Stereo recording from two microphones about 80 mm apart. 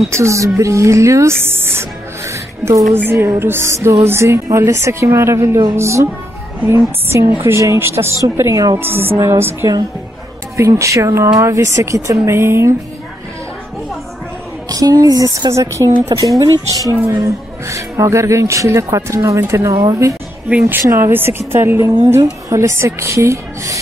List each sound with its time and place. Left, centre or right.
0.1 s speech: right
8.7 s a woman's voice: right
14.7 s a woman's voice: right
16.5 s speech: left
17.6 s speech: right